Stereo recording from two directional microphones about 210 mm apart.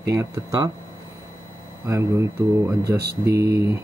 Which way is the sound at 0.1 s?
15° right (ahead or behind).